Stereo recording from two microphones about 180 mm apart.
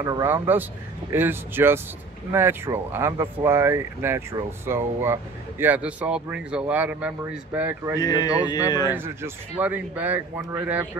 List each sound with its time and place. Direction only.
0.0 s speech: 15° right (ahead or behind)
8.0 s a man's voice: 20° left (ahead or behind)
8.9 s speech: 10° right (ahead or behind)